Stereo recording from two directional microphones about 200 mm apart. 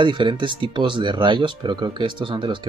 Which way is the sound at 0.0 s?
25° right (ahead or behind).